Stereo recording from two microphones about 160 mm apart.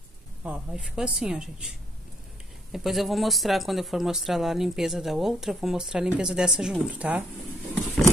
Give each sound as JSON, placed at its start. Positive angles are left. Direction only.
{"t": 0.4, "sound": "speech", "side_deg": -10}
{"t": 2.7, "sound": "speech", "side_deg": 0}